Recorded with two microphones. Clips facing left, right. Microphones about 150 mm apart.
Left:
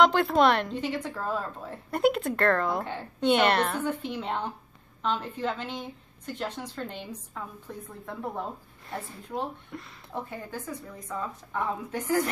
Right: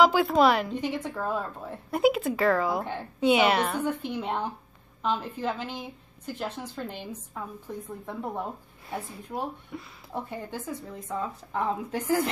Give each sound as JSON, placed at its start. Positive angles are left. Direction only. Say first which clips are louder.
{"t": 0.0, "sound": "a woman's voice", "louder": "right 1 dB", "side_deg": -5}
{"t": 10.1, "sound": "speech", "louder": "right 1 dB", "side_deg": -20}
{"t": 11.5, "sound": "a woman's voice", "louder": "right 2 dB", "side_deg": -35}